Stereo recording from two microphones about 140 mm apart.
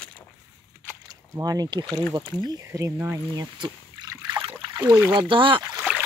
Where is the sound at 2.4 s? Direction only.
20° right (ahead or behind).